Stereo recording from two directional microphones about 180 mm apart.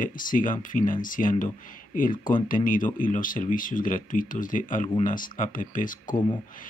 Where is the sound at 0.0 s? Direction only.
50° left (ahead or behind).